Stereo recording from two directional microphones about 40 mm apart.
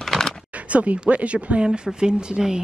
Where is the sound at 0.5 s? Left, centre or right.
Right.